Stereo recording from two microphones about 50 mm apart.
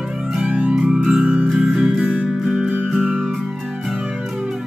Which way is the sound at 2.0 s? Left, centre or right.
Right.